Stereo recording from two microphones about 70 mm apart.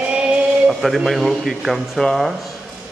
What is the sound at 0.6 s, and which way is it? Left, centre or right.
Speech, centre.